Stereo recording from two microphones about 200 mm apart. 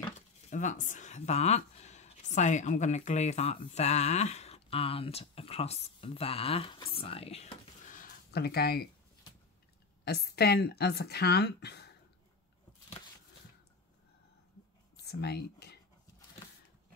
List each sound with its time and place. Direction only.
0.5 s speech: 40° left (ahead or behind)
10.0 s speech: 55° left (ahead or behind)
15.0 s speech: 55° left (ahead or behind)